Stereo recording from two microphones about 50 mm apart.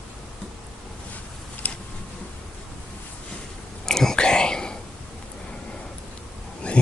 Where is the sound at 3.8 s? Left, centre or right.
Centre.